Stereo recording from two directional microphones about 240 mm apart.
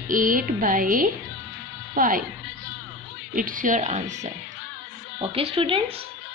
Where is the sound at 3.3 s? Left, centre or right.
Right.